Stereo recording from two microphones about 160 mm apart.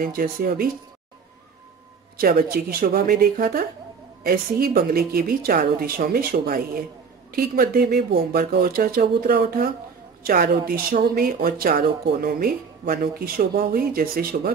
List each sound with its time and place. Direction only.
0.0 s a woman's voice: 65° right (ahead or behind)
2.1 s a woman's voice: 65° right (ahead or behind)